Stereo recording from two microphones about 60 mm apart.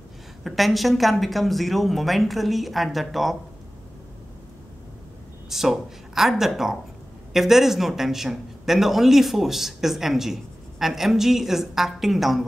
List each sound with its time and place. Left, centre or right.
0.4 s a man's voice: centre
5.5 s a man's voice: centre